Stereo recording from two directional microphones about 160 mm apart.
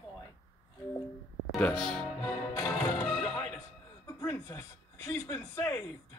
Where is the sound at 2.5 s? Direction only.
20° left (ahead or behind).